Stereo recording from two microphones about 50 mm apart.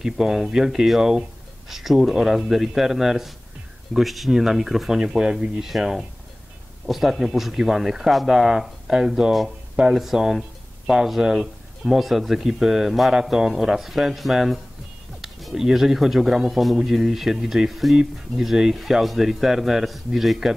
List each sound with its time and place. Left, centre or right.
0.0 s speech: centre